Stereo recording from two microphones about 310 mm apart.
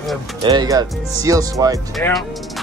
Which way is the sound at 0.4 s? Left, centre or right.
Centre.